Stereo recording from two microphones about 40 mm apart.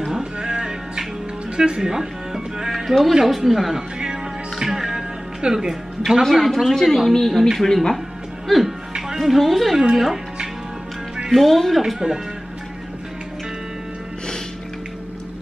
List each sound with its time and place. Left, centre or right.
0.1 s music: right
1.6 s speech: centre
4.0 s music: centre
5.4 s a woman's voice: centre
6.3 s speech: centre
8.5 s music: centre
9.2 s speech: centre
11.3 s speech: centre